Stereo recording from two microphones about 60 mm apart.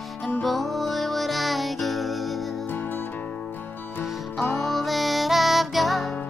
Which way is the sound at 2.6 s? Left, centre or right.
Left.